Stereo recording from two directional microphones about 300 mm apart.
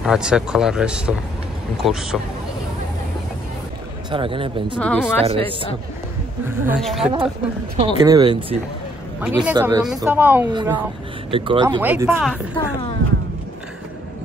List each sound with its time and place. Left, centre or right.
0.0 s speech: centre
4.1 s speech: centre
4.7 s speech: centre
5.2 s speech: centre
6.6 s speech: centre
7.7 s speech: centre